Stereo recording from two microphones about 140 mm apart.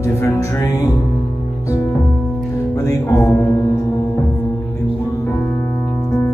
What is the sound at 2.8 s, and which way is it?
Music, 15° left (ahead or behind).